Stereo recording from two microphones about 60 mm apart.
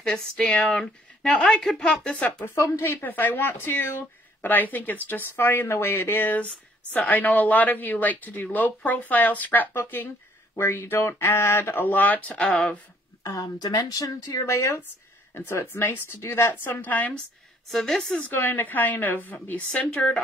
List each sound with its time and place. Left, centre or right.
0.0 s speech: centre
2.5 s speech: left
2.8 s speech: left
13.2 s speech: left
15.3 s speech: left
17.6 s speech: centre
18.3 s speech: left